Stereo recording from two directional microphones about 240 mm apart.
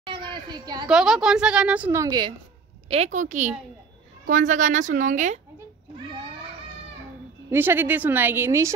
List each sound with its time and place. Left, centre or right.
0.0 s a sound: centre
0.8 s a woman's voice: centre
2.9 s speech: right
7.4 s a woman's voice: centre